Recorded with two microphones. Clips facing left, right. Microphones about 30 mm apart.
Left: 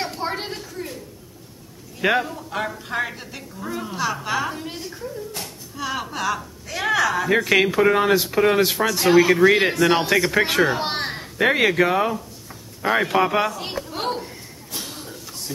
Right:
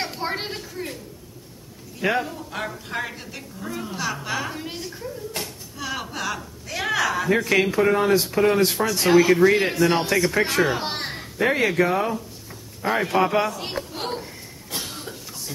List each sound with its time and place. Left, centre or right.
0.0 s a sound: centre
2.0 s a woman's voice: centre
7.2 s speech: centre
7.9 s speech: left
8.7 s speech: centre
9.5 s speech: left
10.6 s a child's voice: centre
11.3 s speech: left
12.9 s speech: centre
13.5 s a sound: centre
14.8 s cough: centre